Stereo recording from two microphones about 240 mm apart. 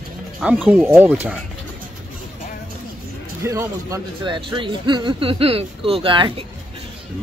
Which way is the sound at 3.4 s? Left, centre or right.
Centre.